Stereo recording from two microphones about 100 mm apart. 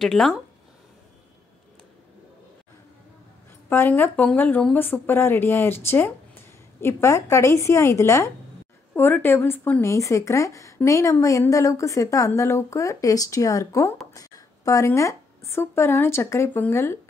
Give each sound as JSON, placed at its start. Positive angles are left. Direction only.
{"t": 0.0, "sound": "speech", "side_deg": 5}
{"t": 3.6, "sound": "speech", "side_deg": 20}